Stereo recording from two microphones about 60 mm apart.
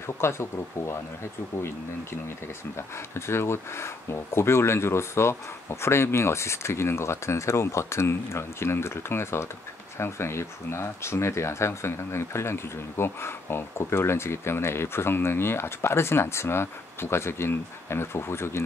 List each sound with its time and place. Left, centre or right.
0.2 s speech: left
3.2 s speech: left